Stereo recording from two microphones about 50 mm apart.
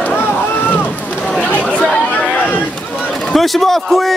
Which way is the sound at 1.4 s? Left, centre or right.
Left.